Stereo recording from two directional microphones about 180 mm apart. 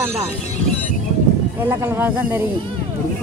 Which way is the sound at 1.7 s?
15° right (ahead or behind).